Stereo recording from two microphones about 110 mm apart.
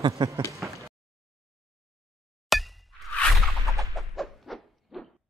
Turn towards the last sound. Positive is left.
turn(degrees=0)  # may be behind; listen again after turning